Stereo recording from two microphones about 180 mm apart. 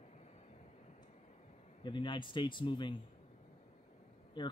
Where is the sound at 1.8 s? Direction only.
25° left (ahead or behind).